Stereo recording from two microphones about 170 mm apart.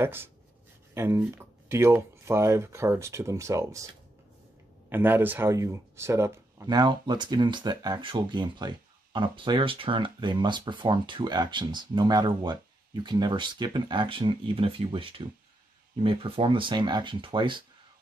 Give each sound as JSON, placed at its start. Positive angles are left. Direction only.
{"t": 0.0, "sound": "speech", "side_deg": -15}
{"t": 4.8, "sound": "speech", "side_deg": -10}